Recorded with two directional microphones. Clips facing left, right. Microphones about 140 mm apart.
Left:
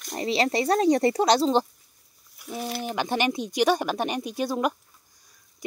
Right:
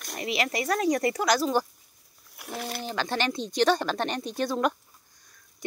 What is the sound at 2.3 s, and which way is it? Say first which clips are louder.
Speech: left 3 dB; 65° right (ahead or behind).